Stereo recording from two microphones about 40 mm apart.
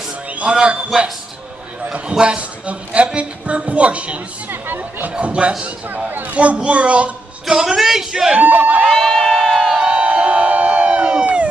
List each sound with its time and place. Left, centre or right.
0.5 s a man's voice: right
1.9 s a man's voice: right
4.5 s speech: right
5.1 s a man's voice: right
6.0 s a woman's voice: right
7.4 s speech: centre
8.4 s speech: right
8.9 s crowd: centre
9.6 s crowd: centre
9.8 s crowd: right